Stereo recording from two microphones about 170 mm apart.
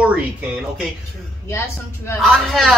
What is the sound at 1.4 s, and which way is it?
Speech, 15° left (ahead or behind).